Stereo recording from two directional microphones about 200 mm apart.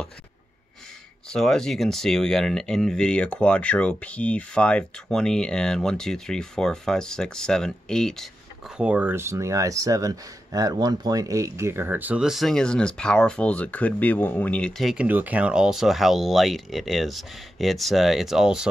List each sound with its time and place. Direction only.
1.3 s speech: centre (ahead or behind)